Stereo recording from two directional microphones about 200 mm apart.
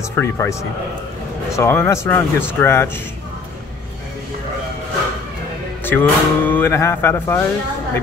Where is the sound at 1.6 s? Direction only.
15° left (ahead or behind).